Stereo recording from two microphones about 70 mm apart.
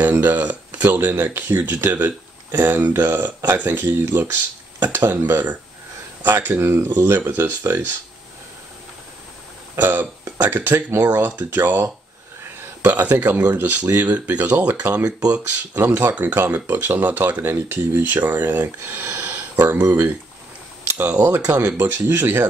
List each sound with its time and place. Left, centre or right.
0.2 s speech: right
9.8 s speech: right
12.8 s speech: right
15.0 s speech: right
15.7 s speech: right
21.2 s speech: right